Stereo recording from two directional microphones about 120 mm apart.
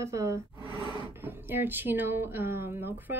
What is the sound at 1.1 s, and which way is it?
A woman's voice, 20° right (ahead or behind).